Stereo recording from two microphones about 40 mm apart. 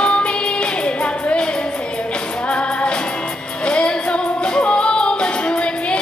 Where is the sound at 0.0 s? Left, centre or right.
Left.